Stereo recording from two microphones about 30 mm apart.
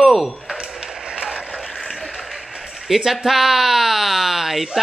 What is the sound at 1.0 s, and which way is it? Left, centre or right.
Mechanisms, centre.